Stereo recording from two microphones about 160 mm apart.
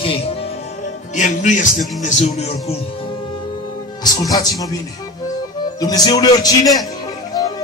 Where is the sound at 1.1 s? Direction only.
50° left (ahead or behind).